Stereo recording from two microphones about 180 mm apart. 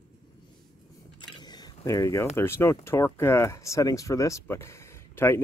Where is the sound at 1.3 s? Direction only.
20° left (ahead or behind).